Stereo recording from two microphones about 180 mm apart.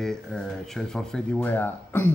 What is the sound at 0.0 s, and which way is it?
Speech, 5° left (ahead or behind).